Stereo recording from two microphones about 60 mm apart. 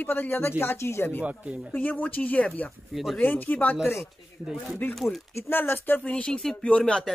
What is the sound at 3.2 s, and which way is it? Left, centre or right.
Speech, left.